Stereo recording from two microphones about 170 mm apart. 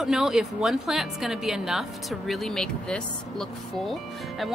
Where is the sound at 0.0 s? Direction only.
Centre (ahead or behind).